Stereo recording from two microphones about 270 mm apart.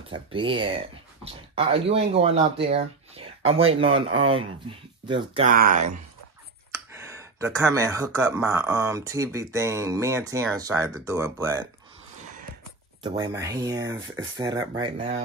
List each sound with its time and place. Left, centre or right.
0.1 s speech: centre
5.5 s speech: right
6.7 s speech: centre
13.0 s speech: centre